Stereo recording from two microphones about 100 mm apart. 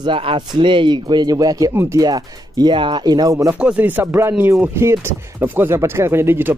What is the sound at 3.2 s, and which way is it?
Speech, 35° right (ahead or behind).